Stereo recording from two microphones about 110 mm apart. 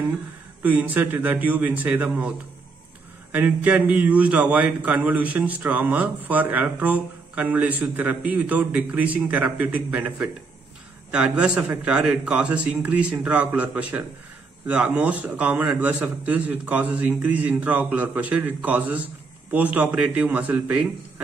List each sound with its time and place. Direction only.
0.6 s a man's voice: 15° right (ahead or behind)